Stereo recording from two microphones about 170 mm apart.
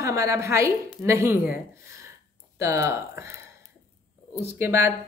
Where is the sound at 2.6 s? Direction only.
15° right (ahead or behind).